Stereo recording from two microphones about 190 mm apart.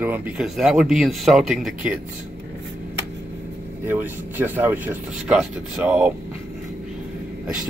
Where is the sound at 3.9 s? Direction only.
10° right (ahead or behind).